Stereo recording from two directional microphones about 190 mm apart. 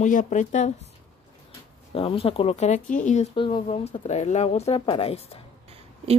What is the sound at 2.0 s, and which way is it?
Speech, 30° left (ahead or behind).